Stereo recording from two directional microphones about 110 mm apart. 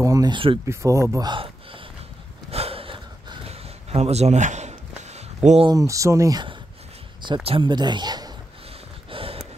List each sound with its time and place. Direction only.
0.0 s speech: 35° right (ahead or behind)
1.2 s a sound: 50° right (ahead or behind)
2.5 s gasp: 65° right (ahead or behind); by 5.7 s 85° right
5.7 s speech: 30° right (ahead or behind)
7.2 s speech: 45° right (ahead or behind)
9.1 s a sound: 60° right (ahead or behind)